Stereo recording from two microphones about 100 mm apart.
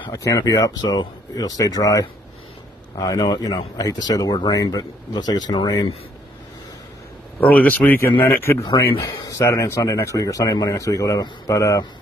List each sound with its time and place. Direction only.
0.1 s speech: 35° left (ahead or behind)
7.3 s speech: 15° left (ahead or behind); by 11.8 s 35° left (ahead or behind)